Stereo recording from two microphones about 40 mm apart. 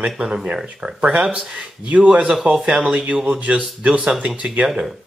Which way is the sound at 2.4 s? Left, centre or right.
Right.